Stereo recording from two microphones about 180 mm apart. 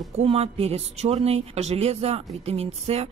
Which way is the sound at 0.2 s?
35° right (ahead or behind).